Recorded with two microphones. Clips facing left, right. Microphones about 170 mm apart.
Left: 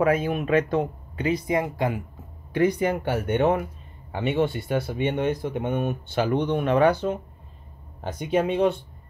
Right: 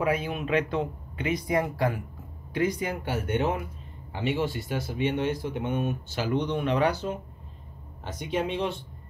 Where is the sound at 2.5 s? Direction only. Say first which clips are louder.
Left 6 dB; 60° left (ahead or behind).